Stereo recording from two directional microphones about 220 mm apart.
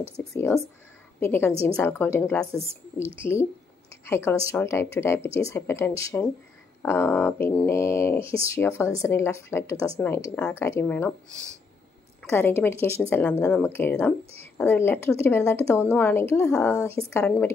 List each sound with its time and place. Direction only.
0.0 s speech: 25° right (ahead or behind)
0.3 s speech: 10° left (ahead or behind)
2.7 s speech: 25° right (ahead or behind)
3.2 s speech: 10° left (ahead or behind)
8.2 s speech: 25° right (ahead or behind)
8.5 s speech: 10° left (ahead or behind)
12.2 s a woman's voice: 10° left (ahead or behind)
12.7 s speech: 25° right (ahead or behind)
13.1 s speech: 10° left (ahead or behind)